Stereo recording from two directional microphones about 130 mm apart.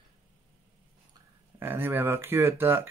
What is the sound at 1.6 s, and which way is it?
Speech, 15° right (ahead or behind).